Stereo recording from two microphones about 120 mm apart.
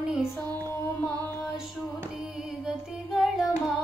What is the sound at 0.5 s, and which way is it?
Carnatic music, 15° left (ahead or behind).